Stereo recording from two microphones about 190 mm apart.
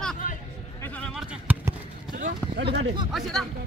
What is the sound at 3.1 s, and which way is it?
Speech, centre (ahead or behind).